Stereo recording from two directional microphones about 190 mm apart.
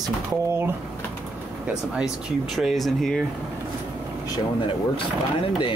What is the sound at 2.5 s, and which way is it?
Speech, centre (ahead or behind).